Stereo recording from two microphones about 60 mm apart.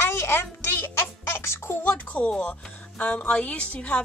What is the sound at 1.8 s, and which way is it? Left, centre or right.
A woman's voice, left.